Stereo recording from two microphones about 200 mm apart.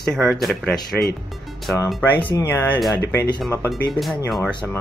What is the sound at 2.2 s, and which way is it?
Speech, 15° left (ahead or behind).